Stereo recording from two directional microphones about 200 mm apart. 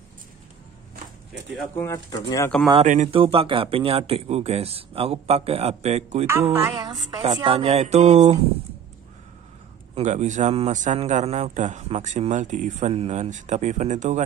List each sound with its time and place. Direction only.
1.8 s speech: 15° left (ahead or behind)
2.7 s speech: 35° right (ahead or behind)
6.2 s a woman's voice: 10° right (ahead or behind)
7.2 s a man's voice: 30° right (ahead or behind)
9.9 s a man's voice: 35° right (ahead or behind)